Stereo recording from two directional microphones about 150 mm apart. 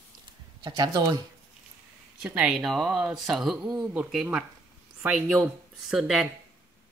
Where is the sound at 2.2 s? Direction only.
5° right (ahead or behind).